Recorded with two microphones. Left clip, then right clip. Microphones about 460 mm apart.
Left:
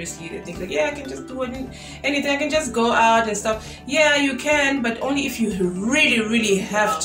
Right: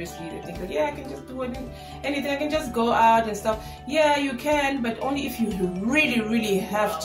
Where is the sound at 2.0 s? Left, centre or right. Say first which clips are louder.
Left 5 dB; right.